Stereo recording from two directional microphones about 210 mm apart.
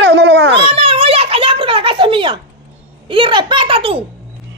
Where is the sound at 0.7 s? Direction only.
25° right (ahead or behind).